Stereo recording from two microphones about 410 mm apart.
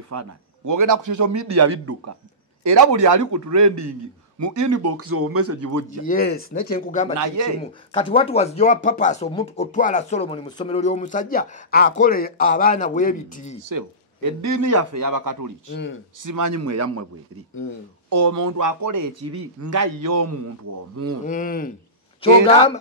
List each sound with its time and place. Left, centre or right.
0.1 s a man's voice: right
6.0 s speech: left
7.2 s a man's voice: right
7.6 s speech: centre
13.7 s speech: right
14.7 s speech: right
15.0 s a man's voice: right
15.7 s speech: left
16.2 s speech: right
18.2 s a man's voice: right
21.3 s speech: centre